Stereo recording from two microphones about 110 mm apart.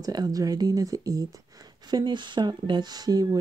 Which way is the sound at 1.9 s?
40° right (ahead or behind).